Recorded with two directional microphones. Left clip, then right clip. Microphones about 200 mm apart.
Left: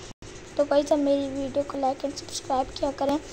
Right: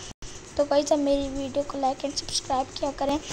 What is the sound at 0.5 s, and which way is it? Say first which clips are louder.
Speech: even; 5° left (ahead or behind).